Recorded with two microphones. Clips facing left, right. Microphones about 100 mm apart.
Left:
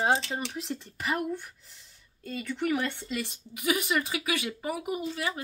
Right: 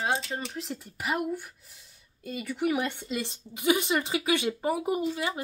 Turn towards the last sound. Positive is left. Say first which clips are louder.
# right 3 dB
turn(degrees=-20)  # may be behind; listen again after turning